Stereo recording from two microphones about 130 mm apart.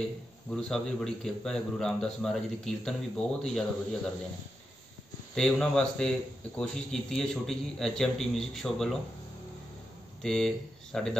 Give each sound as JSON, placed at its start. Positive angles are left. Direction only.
{"t": 0.5, "sound": "speech", "side_deg": 5}
{"t": 5.3, "sound": "speech", "side_deg": 5}
{"t": 10.2, "sound": "speech", "side_deg": 5}